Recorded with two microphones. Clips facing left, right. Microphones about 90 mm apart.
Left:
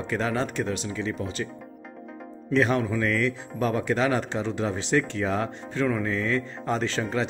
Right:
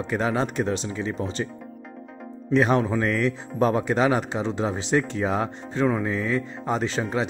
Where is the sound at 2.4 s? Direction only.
25° right (ahead or behind).